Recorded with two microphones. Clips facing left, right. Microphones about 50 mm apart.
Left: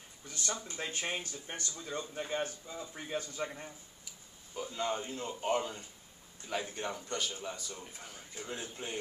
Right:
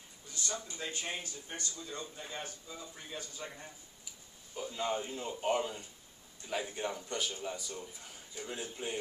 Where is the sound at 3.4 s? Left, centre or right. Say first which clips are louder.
Left 5 dB; left.